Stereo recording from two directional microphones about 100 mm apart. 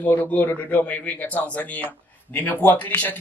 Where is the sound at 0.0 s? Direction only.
15° left (ahead or behind).